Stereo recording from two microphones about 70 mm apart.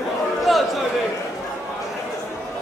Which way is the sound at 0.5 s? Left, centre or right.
Centre.